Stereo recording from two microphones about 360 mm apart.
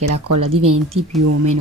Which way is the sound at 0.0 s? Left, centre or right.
Right.